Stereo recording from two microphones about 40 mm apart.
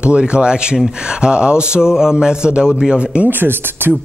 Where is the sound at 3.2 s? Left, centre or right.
Right.